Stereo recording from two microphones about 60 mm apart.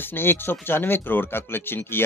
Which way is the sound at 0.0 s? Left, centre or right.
Left.